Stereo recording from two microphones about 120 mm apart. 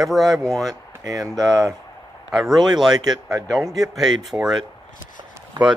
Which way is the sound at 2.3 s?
Centre (ahead or behind).